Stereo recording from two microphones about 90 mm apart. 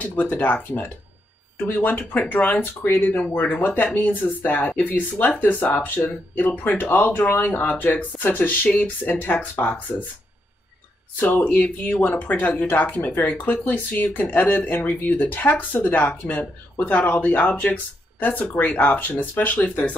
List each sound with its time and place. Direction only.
0.0 s speech: 20° left (ahead or behind)
11.1 s speech: 20° left (ahead or behind)